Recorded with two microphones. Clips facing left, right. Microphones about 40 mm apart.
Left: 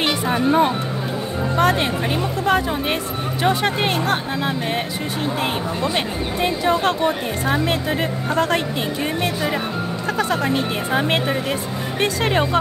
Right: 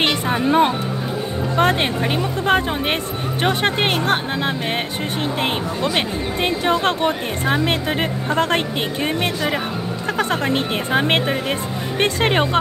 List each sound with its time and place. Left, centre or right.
0.0 s speech: right
1.6 s speech: right
5.8 s speech: right